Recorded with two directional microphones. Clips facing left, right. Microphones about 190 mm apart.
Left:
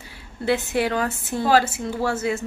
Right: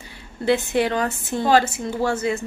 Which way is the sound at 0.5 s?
5° left (ahead or behind).